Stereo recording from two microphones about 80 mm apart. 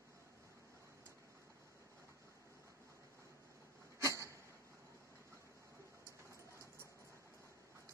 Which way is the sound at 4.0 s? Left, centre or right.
Right.